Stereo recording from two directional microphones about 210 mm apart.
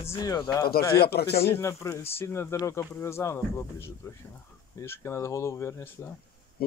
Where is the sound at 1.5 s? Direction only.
15° left (ahead or behind).